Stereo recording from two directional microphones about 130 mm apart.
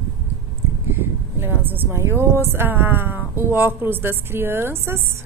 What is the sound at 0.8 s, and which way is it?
A woman's voice, 15° right (ahead or behind).